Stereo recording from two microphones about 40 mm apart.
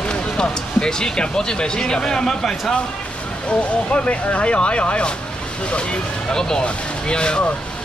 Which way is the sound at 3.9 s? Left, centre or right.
Left.